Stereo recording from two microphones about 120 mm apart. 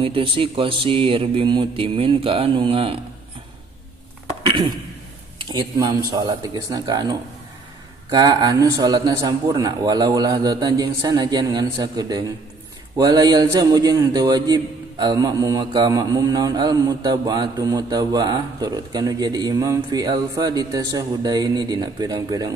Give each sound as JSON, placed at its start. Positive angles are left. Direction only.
{"t": 0.0, "sound": "speech", "side_deg": -50}
{"t": 4.4, "sound": "a sound", "side_deg": -40}
{"t": 5.4, "sound": "a man's voice", "side_deg": -40}